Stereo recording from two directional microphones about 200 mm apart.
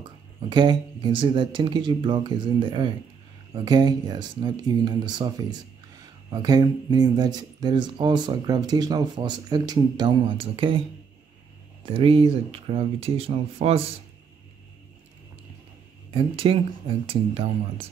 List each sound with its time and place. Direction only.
0.5 s speech: 20° right (ahead or behind)
6.3 s speech: 20° right (ahead or behind)
11.8 s speech: 25° right (ahead or behind)
16.1 s speech: 25° right (ahead or behind)